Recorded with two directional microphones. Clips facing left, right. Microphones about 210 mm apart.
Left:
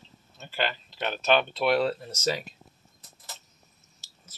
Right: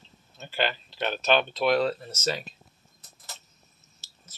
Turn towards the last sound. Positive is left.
turn(degrees=15)  # may be behind; listen again after turning